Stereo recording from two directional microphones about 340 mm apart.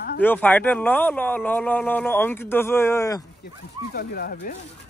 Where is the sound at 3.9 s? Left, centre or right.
Left.